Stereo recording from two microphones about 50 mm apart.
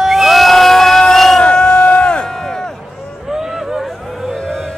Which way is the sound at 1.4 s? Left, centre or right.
Centre.